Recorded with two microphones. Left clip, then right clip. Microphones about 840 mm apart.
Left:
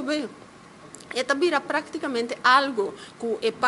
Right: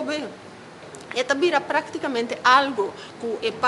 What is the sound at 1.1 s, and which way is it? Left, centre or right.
A woman's voice, left.